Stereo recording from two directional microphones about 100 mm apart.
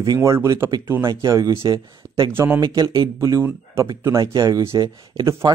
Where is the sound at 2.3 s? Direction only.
25° right (ahead or behind).